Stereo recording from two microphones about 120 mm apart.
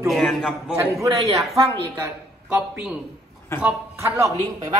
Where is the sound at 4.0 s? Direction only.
25° right (ahead or behind).